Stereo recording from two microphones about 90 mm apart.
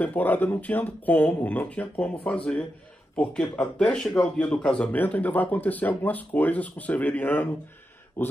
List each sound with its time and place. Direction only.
0.0 s speech: 20° left (ahead or behind)